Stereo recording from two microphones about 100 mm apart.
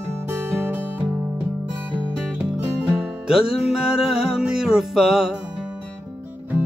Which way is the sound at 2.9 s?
5° right (ahead or behind).